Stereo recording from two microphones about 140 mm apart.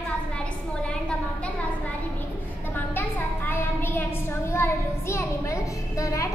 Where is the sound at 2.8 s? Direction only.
15° left (ahead or behind).